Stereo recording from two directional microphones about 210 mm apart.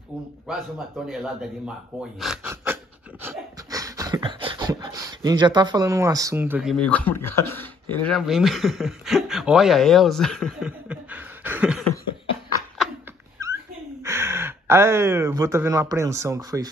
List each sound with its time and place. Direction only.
1.0 s a man's voice: centre (ahead or behind)
2.1 s pant: 5° right (ahead or behind)
13.4 s a sound: 15° right (ahead or behind)
14.0 s speech: 10° right (ahead or behind)